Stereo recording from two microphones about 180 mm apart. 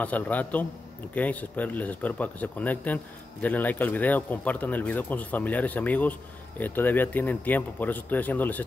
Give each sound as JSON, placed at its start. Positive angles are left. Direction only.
{"t": 0.0, "sound": "speech", "side_deg": 10}